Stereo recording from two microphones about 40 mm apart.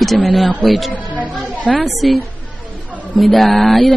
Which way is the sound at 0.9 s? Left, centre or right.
Right.